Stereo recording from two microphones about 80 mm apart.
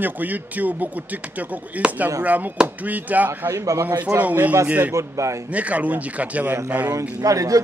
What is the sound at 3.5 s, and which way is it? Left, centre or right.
Speech, right.